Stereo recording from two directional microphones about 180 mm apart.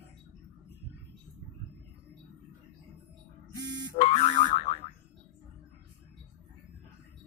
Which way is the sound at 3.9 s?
35° left (ahead or behind).